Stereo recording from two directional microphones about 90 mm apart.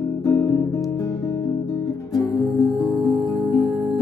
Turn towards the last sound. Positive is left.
turn(degrees=0)  # may be behind; listen again after turning